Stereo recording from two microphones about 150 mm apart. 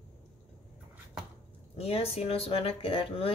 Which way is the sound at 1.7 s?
40° left (ahead or behind).